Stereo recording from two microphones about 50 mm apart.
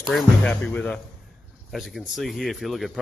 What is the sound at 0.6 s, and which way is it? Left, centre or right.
Speech, centre.